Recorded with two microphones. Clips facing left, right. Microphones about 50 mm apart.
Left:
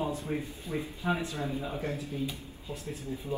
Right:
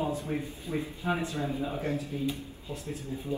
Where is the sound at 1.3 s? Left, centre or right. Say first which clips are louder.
Right 2 dB; right.